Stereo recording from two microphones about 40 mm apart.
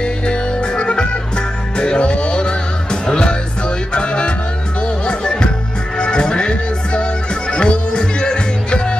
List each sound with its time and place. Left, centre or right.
0.0 s music: left